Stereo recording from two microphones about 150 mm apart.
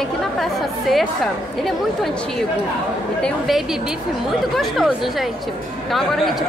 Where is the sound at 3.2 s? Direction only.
Centre (ahead or behind).